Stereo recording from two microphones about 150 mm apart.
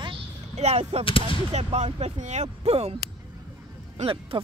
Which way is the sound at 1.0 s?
35° left (ahead or behind).